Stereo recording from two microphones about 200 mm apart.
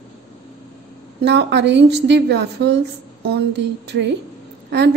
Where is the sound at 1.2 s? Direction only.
60° right (ahead or behind).